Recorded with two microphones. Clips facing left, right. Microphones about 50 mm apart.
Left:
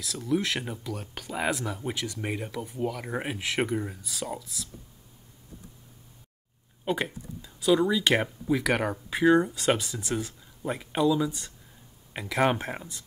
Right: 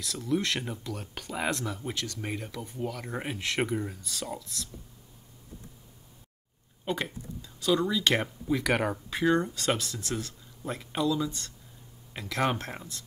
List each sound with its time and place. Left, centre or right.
0.0 s speech: centre
6.8 s speech: centre